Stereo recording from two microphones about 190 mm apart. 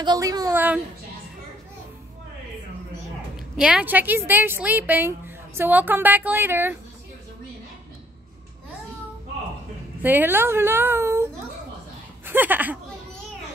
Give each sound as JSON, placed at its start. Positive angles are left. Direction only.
{"t": 0.0, "sound": "a woman's voice", "side_deg": -20}
{"t": 3.5, "sound": "a woman's voice", "side_deg": -5}
{"t": 10.0, "sound": "a woman's voice", "side_deg": -10}
{"t": 12.3, "sound": "speech", "side_deg": -10}